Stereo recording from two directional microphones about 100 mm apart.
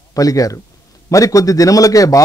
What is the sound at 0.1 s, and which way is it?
A man's voice, 35° left (ahead or behind).